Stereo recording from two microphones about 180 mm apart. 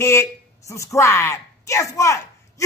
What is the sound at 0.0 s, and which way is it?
A woman's voice, 15° left (ahead or behind).